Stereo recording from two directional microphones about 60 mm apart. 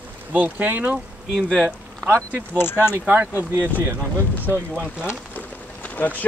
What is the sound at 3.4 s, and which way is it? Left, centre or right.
Speech, right.